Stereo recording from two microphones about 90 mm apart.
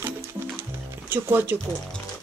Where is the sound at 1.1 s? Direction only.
20° right (ahead or behind).